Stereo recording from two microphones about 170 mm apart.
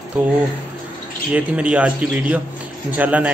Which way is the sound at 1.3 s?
5° right (ahead or behind).